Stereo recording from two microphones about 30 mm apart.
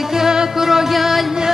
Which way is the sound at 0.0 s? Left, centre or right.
Centre.